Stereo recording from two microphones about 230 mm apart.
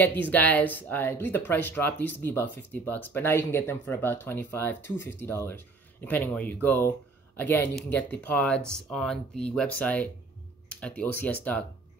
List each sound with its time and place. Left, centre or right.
0.0 s speech: centre